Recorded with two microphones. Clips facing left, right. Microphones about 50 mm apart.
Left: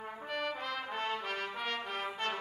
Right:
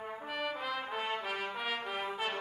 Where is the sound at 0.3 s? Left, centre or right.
Centre.